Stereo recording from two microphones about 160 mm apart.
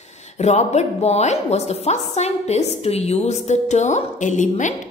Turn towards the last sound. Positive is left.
turn(degrees=50)  # may be behind; listen again after turning